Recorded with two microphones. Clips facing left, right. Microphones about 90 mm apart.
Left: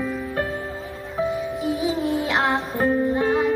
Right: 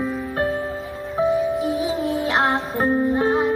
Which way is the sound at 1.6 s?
35° right (ahead or behind).